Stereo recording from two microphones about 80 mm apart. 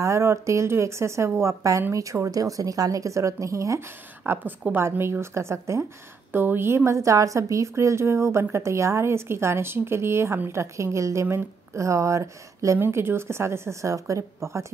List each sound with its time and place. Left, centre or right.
0.0 s a woman's voice: right
4.3 s a woman's voice: right
12.7 s a woman's voice: right